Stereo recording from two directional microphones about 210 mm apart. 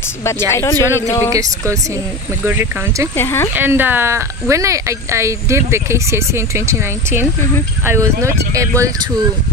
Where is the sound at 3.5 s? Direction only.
10° right (ahead or behind).